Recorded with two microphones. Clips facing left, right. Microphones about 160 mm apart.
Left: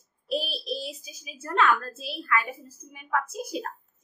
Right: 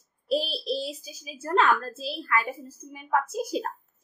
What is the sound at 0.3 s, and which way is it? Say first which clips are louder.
A child's voice: right 3 dB; 30° right (ahead or behind).